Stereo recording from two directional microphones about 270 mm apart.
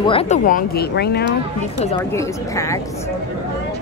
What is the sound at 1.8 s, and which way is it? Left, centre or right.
Speech, left.